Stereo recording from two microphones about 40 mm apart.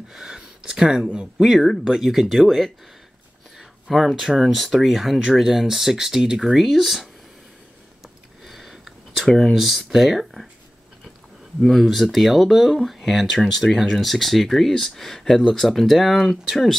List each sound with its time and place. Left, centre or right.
0.1 s speech: centre
3.9 s speech: centre
8.5 s a sound: centre
9.2 s speech: centre
9.5 s speech: centre
11.6 s speech: centre